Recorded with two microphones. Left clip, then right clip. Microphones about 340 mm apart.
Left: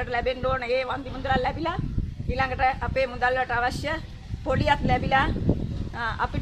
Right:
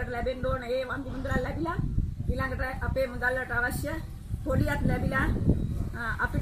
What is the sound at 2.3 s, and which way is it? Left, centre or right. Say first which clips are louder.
A woman's voice: left 9 dB; centre.